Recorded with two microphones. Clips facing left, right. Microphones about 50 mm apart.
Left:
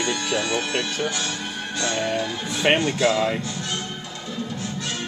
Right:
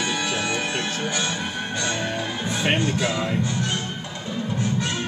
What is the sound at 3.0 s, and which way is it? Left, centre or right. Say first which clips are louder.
Speech: left 5 dB; centre.